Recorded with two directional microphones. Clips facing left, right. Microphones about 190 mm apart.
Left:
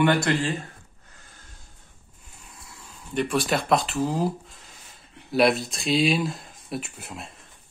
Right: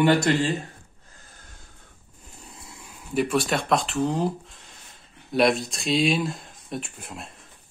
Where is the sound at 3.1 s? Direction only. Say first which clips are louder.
Right 1 dB; centre (ahead or behind).